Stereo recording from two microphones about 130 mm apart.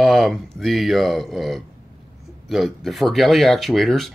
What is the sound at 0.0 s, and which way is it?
Speech, centre (ahead or behind).